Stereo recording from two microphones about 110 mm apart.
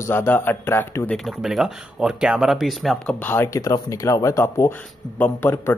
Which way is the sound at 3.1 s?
15° left (ahead or behind).